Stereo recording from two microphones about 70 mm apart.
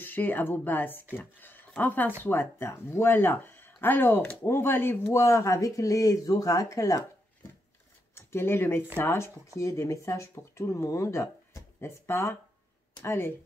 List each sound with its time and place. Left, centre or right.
0.0 s speech: left
4.2 s speech: centre
4.5 s speech: left
8.1 s speech: left
9.6 s speech: left